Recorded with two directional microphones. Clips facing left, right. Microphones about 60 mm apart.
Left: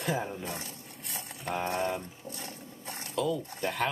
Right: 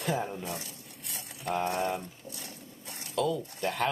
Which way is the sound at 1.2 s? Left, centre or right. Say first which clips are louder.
Right 2 dB; centre.